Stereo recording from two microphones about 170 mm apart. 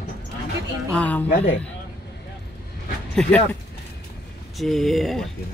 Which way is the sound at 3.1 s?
5° left (ahead or behind).